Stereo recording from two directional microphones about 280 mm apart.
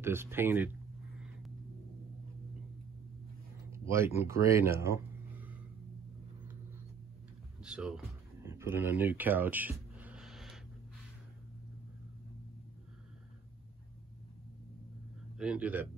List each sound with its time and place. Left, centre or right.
0.0 s speech: centre
3.9 s speech: centre
7.6 s a sound: centre
15.3 s speech: centre